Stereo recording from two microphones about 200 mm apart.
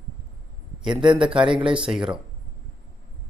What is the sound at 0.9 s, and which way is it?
Speech, 25° right (ahead or behind).